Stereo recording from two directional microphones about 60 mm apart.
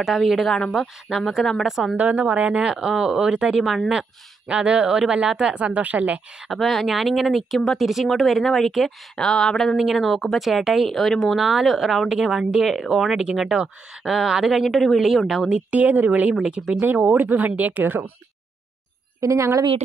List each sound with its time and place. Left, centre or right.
0.0 s speech: centre
2.0 s speech: right
3.6 s speech: centre
4.5 s speech: centre
6.5 s speech: centre
15.7 s speech: right
16.8 s speech: right
19.2 s a woman's voice: right